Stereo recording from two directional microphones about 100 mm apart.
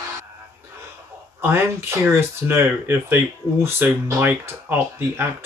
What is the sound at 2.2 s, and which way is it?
Speech, 25° right (ahead or behind).